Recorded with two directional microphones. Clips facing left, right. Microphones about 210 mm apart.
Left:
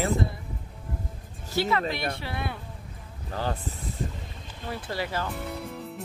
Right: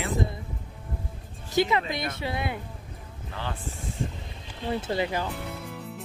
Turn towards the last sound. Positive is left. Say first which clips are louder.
# left 2 dB
turn(degrees=0)  # may be behind; listen again after turning